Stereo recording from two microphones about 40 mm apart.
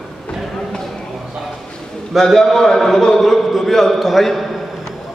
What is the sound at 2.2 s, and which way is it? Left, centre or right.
A man's voice, centre.